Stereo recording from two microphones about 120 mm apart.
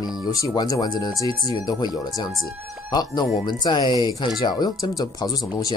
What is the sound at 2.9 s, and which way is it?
Speech, 35° left (ahead or behind).